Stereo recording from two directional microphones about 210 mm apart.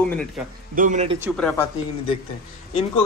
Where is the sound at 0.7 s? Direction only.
35° right (ahead or behind).